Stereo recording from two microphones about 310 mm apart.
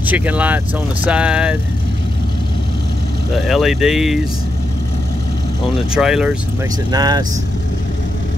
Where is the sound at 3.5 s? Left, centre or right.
Centre.